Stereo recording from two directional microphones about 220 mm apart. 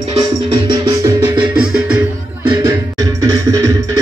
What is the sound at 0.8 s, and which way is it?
Music, 20° right (ahead or behind).